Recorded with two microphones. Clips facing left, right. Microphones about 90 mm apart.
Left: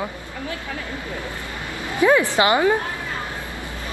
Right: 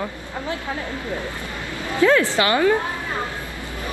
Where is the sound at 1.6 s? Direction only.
20° left (ahead or behind).